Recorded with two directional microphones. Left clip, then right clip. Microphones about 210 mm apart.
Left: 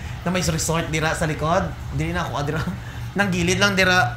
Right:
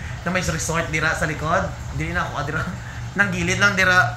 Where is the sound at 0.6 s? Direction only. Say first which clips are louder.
Right 2 dB; 55° left (ahead or behind).